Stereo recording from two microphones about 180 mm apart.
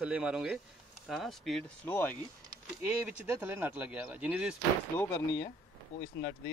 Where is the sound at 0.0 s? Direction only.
5° right (ahead or behind); by 2.1 s 10° left (ahead or behind).